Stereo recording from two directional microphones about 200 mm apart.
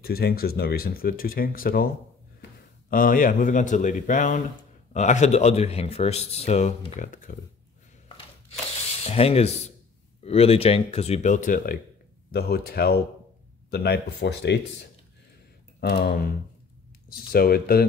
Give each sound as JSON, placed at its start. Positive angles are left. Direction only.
{"t": 0.0, "sound": "speech", "side_deg": 50}
{"t": 2.9, "sound": "speech", "side_deg": 45}
{"t": 9.0, "sound": "speech", "side_deg": 30}
{"t": 17.3, "sound": "speech", "side_deg": 50}